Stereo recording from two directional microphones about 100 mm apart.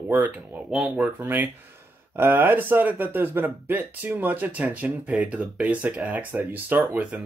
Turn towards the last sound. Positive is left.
turn(degrees=-15)  # may be behind; listen again after turning